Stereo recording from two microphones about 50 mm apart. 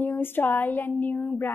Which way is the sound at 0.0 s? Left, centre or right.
Left.